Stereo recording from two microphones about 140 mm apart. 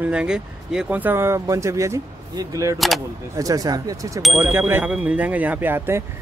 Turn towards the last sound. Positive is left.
turn(degrees=-15)  # may be behind; listen again after turning